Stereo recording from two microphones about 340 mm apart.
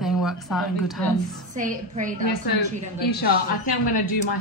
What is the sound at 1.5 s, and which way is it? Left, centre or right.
Speech, right.